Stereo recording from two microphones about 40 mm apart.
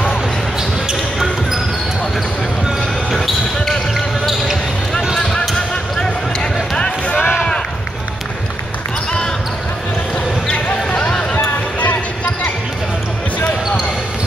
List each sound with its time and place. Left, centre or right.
3.9 s basketball bounce: centre
6.8 s run: left
10.5 s a sound: left